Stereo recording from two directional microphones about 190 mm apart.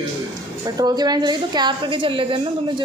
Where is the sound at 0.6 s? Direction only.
20° right (ahead or behind).